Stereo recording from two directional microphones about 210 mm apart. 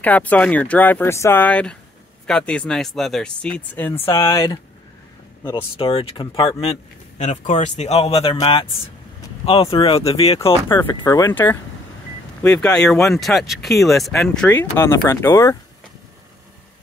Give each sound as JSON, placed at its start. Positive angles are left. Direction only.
{"t": 0.0, "sound": "speech", "side_deg": 5}
{"t": 4.1, "sound": "speech", "side_deg": 25}
{"t": 5.4, "sound": "speech", "side_deg": 20}